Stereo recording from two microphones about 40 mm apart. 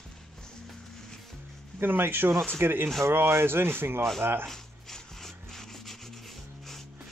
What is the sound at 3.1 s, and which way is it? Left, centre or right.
Speech, right.